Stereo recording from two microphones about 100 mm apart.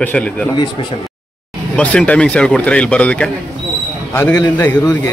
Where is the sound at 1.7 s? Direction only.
10° left (ahead or behind).